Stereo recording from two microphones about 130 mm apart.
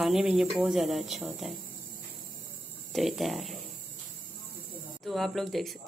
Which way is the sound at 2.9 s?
Centre (ahead or behind).